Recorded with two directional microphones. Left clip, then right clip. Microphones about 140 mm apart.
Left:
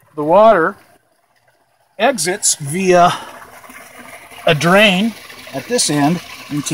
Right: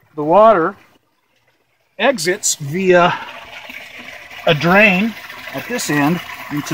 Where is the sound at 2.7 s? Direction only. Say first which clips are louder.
Left 1 dB; 35° left (ahead or behind).